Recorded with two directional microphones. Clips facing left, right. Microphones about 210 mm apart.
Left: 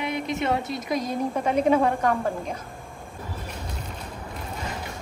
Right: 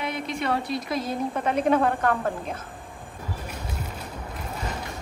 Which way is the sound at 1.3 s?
10° left (ahead or behind).